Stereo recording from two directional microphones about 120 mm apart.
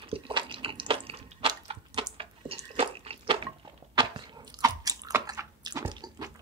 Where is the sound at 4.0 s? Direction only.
40° right (ahead or behind).